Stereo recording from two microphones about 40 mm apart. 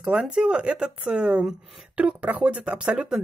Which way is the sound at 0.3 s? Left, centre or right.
Right.